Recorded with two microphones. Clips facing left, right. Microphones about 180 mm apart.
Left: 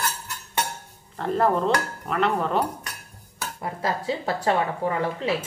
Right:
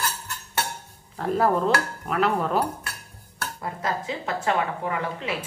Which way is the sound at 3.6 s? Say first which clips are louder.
Left 2 dB; 30° left (ahead or behind).